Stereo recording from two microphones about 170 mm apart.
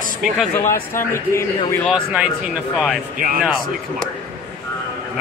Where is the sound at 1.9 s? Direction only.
5° right (ahead or behind).